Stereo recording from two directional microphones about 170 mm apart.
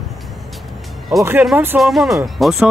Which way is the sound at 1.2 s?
15° right (ahead or behind).